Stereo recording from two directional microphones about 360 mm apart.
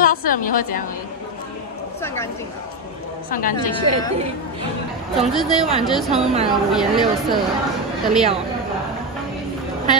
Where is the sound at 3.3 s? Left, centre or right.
Left.